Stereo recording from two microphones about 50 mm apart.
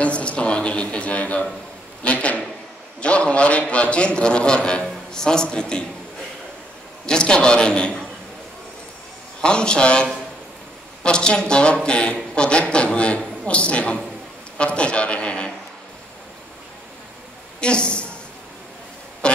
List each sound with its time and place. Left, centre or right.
0.0 s a sound: left
2.0 s a man's voice: left
7.1 s a man's voice: centre
9.4 s a man's voice: centre
17.6 s speech: centre
19.2 s music: centre